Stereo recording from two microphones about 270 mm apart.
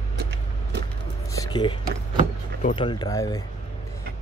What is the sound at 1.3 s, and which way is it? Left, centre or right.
Speech, centre.